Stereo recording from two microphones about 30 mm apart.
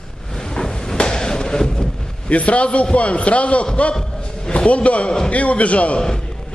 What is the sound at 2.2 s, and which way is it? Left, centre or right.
A man's voice, left.